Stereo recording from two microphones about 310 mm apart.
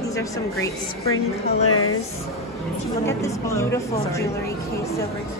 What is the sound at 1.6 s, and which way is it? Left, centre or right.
Speech, left.